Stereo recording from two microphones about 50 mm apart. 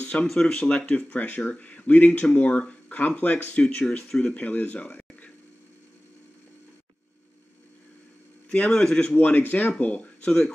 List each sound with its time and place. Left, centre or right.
0.0 s a sound: left
0.5 s speech: centre
1.0 s speech: left
3.5 s speech: centre
8.5 s speech: left
9.1 s speech: left